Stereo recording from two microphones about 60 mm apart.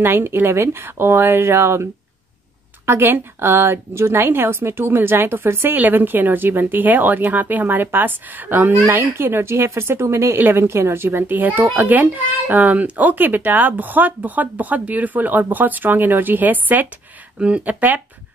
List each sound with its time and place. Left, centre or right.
0.0 s speech: right
2.9 s a woman's voice: right